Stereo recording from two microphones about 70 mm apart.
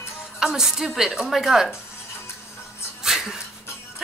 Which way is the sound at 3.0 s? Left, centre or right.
Centre.